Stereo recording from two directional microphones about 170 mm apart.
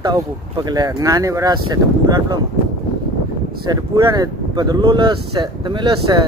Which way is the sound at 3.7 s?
25° right (ahead or behind).